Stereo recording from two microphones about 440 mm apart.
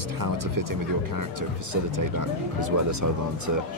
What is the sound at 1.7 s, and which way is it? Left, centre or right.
Speech, right.